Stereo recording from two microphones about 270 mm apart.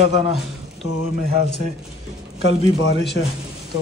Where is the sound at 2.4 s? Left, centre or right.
Right.